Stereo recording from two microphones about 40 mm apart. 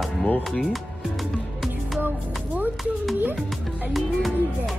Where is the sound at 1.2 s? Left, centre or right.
Centre.